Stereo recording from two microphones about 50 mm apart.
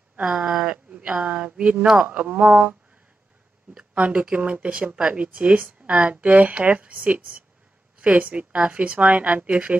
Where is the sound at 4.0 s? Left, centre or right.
Right.